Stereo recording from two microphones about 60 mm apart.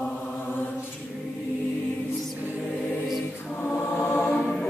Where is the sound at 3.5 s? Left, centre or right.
Left.